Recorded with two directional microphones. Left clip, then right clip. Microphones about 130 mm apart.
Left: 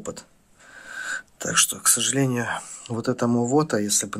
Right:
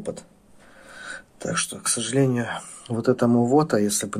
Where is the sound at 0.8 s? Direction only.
35° left (ahead or behind).